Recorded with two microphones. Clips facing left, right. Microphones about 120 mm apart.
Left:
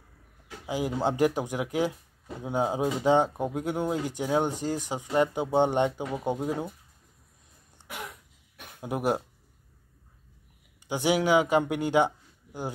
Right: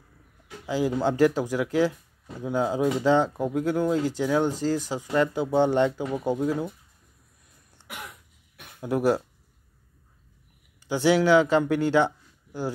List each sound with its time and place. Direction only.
0.7 s speech: 20° left (ahead or behind)
8.8 s speech: 20° left (ahead or behind)
10.9 s speech: 20° left (ahead or behind)